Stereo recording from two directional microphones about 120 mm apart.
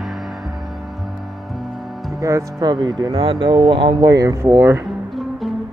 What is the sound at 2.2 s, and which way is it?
Speech, 30° right (ahead or behind).